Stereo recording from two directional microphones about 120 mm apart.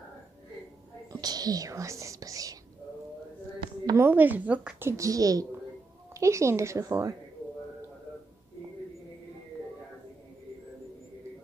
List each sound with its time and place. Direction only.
1.2 s whispering: 35° right (ahead or behind)
3.8 s a woman's voice: 20° right (ahead or behind)